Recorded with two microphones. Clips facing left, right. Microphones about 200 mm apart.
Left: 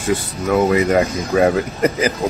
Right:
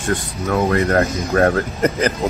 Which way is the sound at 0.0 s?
5° left (ahead or behind).